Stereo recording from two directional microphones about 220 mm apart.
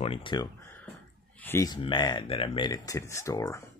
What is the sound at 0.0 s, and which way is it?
Speech, 25° left (ahead or behind).